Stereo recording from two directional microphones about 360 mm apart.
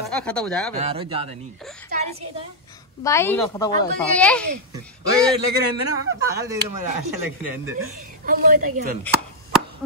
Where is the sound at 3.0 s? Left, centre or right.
Centre.